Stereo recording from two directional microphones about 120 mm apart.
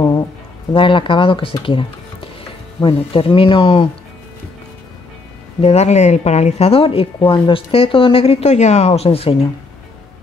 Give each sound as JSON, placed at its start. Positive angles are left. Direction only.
{"t": 0.7, "sound": "speech", "side_deg": 45}
{"t": 5.6, "sound": "speech", "side_deg": 60}